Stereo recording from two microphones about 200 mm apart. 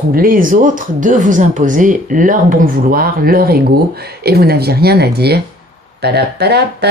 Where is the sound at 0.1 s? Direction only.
45° right (ahead or behind).